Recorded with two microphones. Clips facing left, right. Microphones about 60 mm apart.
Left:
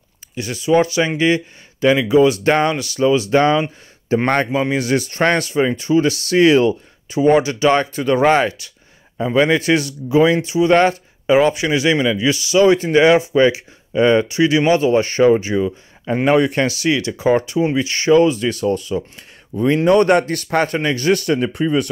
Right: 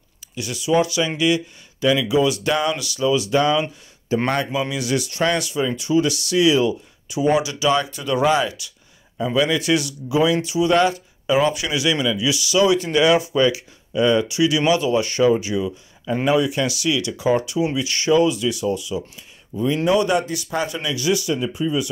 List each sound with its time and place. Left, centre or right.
0.4 s speech: left
16.3 s a man's voice: left